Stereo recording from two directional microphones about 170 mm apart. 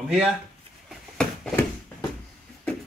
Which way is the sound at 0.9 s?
5° left (ahead or behind).